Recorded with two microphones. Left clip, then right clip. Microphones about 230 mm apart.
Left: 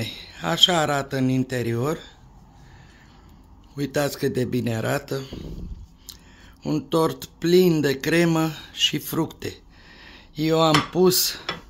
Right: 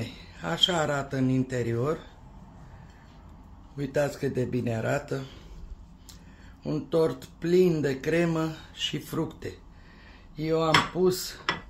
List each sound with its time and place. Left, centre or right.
0.0 s speech: left
3.7 s speech: left
6.6 s speech: left